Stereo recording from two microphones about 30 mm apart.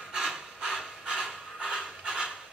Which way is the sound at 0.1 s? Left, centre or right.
Right.